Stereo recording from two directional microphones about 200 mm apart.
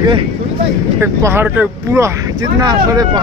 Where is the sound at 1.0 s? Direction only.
10° right (ahead or behind).